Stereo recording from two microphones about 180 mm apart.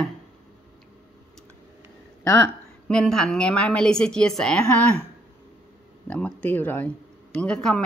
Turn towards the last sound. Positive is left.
turn(degrees=5)  # may be behind; listen again after turning